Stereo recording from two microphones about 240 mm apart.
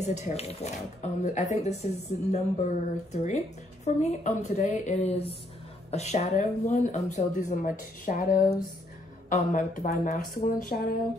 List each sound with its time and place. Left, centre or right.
0.0 s a woman's voice: left